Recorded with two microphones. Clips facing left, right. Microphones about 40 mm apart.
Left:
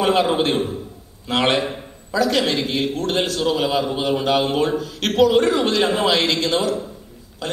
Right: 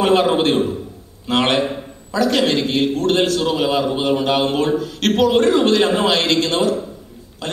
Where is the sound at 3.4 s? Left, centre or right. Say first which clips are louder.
Right 2 dB; right.